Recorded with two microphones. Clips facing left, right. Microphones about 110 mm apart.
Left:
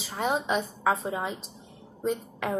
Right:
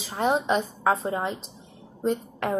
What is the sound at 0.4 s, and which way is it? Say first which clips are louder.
A woman's voice: right 3 dB; centre (ahead or behind).